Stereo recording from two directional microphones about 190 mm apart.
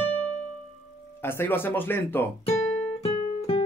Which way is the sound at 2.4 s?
35° left (ahead or behind).